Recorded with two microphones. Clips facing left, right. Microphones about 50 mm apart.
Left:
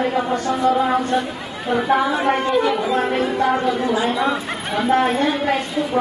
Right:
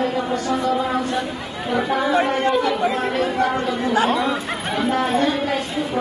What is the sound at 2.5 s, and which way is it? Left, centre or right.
A woman's voice, centre.